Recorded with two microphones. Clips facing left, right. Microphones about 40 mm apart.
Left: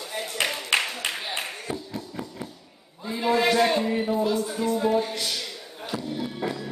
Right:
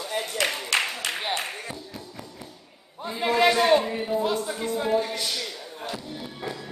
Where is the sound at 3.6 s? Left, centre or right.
Centre.